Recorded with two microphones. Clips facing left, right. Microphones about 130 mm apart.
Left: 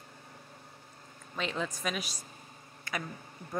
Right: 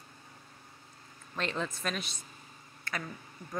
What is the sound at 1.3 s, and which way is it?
Speech, centre (ahead or behind).